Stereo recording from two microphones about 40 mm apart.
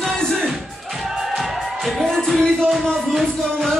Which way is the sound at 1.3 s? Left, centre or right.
Centre.